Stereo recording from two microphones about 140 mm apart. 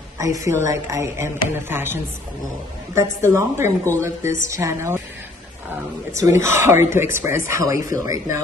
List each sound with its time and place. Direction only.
0.2 s a woman's voice: 25° right (ahead or behind)
3.3 s a woman's voice: 20° right (ahead or behind)
6.1 s a woman's voice: 20° right (ahead or behind)